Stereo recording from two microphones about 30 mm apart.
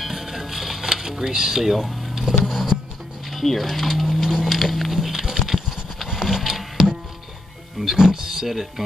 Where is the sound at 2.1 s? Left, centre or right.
Centre.